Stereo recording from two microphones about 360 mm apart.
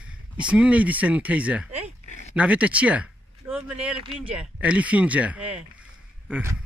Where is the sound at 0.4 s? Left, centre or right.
Centre.